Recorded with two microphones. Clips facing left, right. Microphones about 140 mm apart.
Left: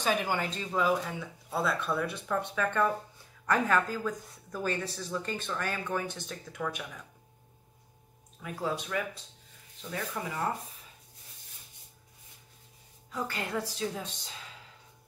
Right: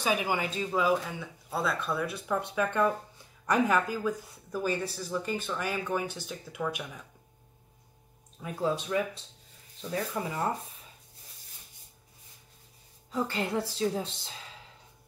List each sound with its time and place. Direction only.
0.0 s speech: 10° right (ahead or behind)
8.4 s a woman's voice: 25° right (ahead or behind)
13.1 s a woman's voice: 25° right (ahead or behind)